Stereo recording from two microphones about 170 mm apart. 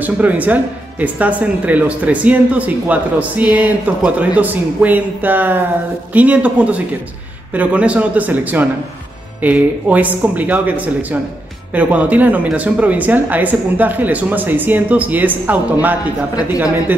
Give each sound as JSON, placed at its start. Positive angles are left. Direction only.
{"t": 0.0, "sound": "speech", "side_deg": -10}